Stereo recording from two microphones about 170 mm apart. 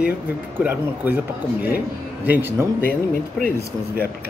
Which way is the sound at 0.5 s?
10° right (ahead or behind).